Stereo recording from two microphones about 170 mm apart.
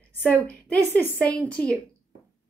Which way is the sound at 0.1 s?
10° left (ahead or behind).